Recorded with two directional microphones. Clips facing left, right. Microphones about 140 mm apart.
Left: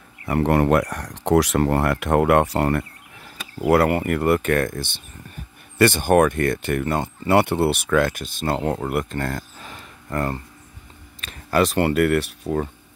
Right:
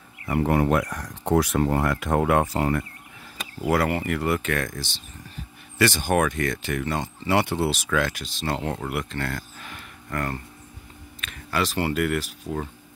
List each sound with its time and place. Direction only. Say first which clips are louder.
0.3 s speech: left 3 dB; 65° left (ahead or behind)
3.6 s speech: left 5 dB; 55° left (ahead or behind)
9.3 s a sound: left 3 dB; 30° left (ahead or behind)
11.6 s speech: left 5 dB; 55° left (ahead or behind)